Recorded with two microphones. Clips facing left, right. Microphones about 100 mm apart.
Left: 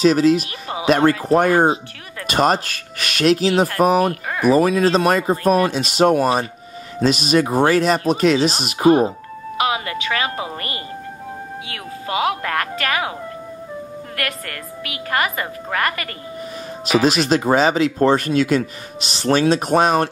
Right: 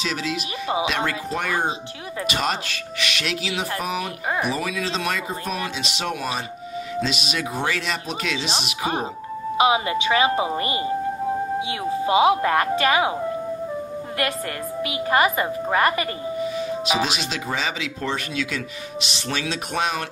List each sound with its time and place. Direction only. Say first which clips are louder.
0.0 s speech: left 13 dB; 45° left (ahead or behind)
9.6 s speech: right 2 dB; 20° right (ahead or behind)
14.8 s speech: right 2 dB; 20° right (ahead or behind)
17.0 s speech: left 9 dB; 45° left (ahead or behind)